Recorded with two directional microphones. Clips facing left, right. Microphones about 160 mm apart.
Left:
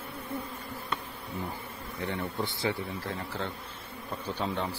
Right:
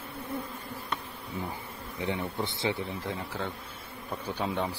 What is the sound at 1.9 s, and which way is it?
Speech, 15° right (ahead or behind).